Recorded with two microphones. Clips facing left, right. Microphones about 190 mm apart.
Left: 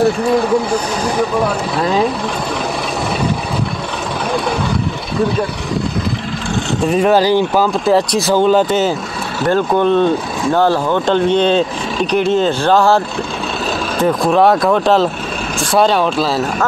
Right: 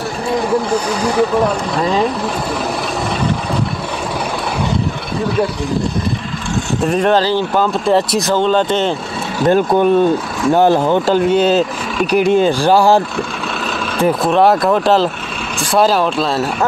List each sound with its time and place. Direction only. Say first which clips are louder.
1.8 s speech: left 1 dB; centre (ahead or behind)
6.9 s speech: left 2 dB; 5° left (ahead or behind)
9.5 s speech: right 1 dB; 10° right (ahead or behind)
14.0 s speech: even; centre (ahead or behind)